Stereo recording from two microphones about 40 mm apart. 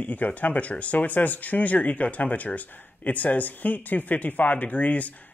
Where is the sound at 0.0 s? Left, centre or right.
Left.